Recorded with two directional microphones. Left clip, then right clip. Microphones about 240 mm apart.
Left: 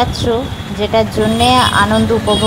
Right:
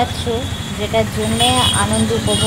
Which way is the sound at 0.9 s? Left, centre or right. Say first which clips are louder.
Left 4 dB; left.